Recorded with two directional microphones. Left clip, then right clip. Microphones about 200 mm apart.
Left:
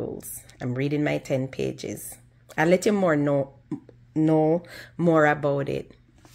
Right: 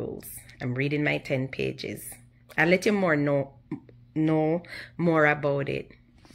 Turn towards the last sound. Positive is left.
turn(degrees=15)  # may be behind; listen again after turning